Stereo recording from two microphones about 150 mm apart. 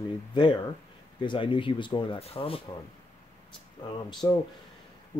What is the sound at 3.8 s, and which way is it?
Speech, 30° left (ahead or behind).